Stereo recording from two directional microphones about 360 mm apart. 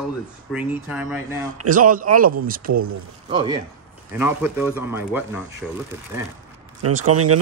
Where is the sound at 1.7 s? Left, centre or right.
Right.